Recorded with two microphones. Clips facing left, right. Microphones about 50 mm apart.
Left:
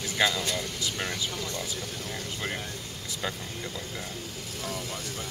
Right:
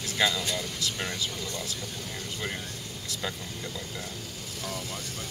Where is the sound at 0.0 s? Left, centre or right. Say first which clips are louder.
Left 1 dB; centre.